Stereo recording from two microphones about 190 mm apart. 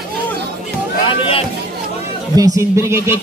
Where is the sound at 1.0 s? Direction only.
30° left (ahead or behind).